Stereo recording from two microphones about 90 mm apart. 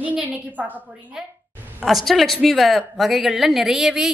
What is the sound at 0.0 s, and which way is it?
Speech, 15° right (ahead or behind).